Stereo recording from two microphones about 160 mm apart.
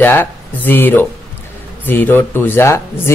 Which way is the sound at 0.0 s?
15° left (ahead or behind).